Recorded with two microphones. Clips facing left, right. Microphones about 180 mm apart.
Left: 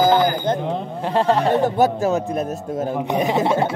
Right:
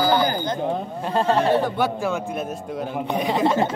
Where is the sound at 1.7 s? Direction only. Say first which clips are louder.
Left 5 dB; 40° left (ahead or behind).